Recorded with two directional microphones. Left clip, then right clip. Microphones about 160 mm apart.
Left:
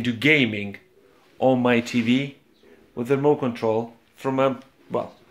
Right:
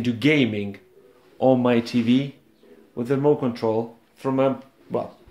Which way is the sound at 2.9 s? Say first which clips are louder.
Even; 20° left (ahead or behind).